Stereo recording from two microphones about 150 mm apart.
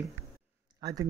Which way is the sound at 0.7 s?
25° right (ahead or behind).